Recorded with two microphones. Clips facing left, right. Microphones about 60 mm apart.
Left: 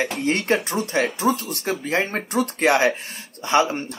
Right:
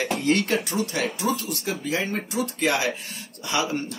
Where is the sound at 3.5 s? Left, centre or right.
Left.